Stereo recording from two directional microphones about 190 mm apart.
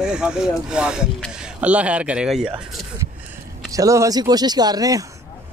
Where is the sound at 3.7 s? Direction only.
15° right (ahead or behind).